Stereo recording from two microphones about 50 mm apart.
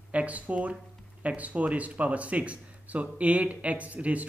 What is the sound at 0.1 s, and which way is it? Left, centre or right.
Speech, right.